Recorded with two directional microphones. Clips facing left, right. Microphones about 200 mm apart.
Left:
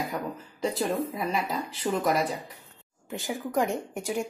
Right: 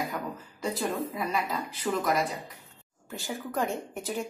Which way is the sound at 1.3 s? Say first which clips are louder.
Left 1 dB; 30° left (ahead or behind).